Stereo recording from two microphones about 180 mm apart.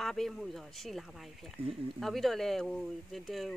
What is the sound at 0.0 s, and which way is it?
Speech, centre (ahead or behind).